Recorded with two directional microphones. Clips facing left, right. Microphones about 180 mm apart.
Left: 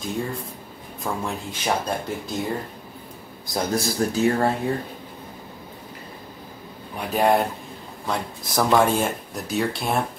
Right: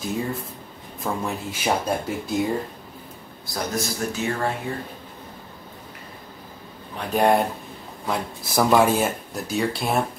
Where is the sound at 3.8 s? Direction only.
35° left (ahead or behind).